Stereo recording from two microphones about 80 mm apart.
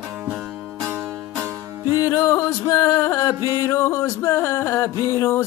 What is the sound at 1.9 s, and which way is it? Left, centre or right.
Music, left.